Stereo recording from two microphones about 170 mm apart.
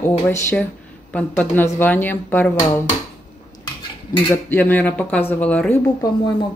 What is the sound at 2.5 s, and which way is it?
Speech, 20° left (ahead or behind).